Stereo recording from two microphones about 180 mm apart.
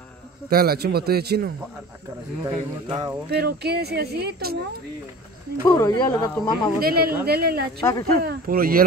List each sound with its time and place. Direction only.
0.5 s speech: 55° right (ahead or behind)
2.5 s speech: 25° right (ahead or behind)
3.3 s speech: 60° right (ahead or behind)
5.7 s speech: 20° left (ahead or behind)
6.8 s speech: 55° right (ahead or behind)